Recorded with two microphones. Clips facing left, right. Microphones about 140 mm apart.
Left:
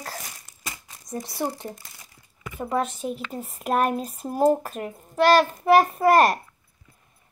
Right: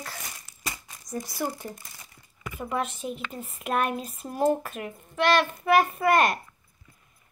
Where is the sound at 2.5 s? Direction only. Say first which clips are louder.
Left 4 dB; 35° left (ahead or behind).